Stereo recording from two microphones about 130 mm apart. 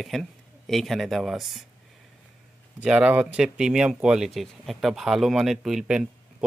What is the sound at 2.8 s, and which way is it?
Speech, 10° right (ahead or behind).